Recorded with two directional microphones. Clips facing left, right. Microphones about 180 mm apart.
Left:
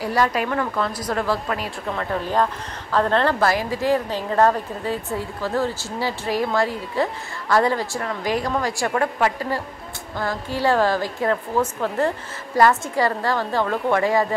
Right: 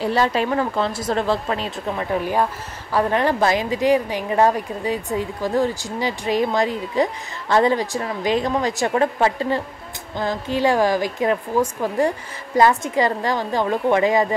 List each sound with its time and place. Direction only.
0.0 s speech: 25° right (ahead or behind)
2.1 s a woman's voice: 10° right (ahead or behind)